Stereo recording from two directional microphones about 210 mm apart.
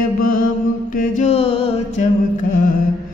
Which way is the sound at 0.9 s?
35° left (ahead or behind).